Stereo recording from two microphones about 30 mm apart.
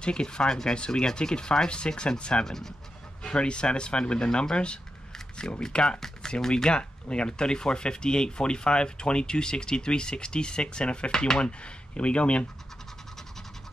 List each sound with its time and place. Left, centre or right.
0.0 s speech: left
2.4 s speech: centre
3.3 s speech: left